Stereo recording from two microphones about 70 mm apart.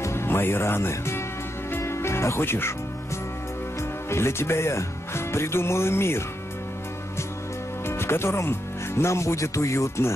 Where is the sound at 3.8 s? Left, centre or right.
Left.